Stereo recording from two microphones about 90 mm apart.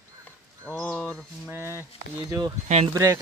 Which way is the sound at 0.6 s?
20° left (ahead or behind).